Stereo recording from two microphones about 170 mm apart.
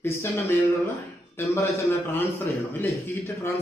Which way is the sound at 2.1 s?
10° left (ahead or behind).